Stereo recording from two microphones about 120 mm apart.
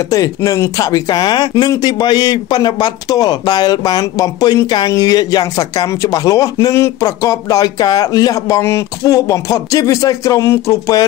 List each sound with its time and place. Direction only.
0.1 s speech: 30° left (ahead or behind)